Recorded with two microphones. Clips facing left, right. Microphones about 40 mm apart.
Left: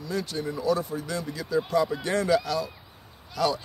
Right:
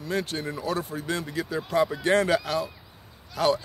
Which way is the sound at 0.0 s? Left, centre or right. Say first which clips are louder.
Right 1 dB; right.